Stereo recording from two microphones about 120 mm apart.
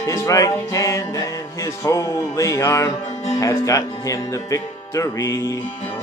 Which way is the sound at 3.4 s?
30° left (ahead or behind).